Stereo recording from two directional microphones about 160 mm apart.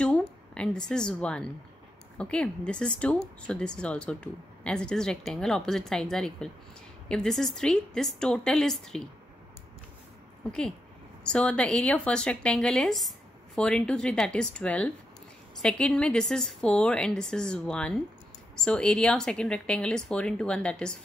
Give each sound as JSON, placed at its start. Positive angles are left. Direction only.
{"t": 0.0, "sound": "a woman's voice", "side_deg": 5}
{"t": 11.2, "sound": "speech", "side_deg": 5}